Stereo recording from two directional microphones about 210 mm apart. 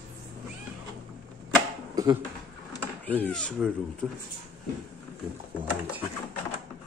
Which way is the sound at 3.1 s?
5° left (ahead or behind).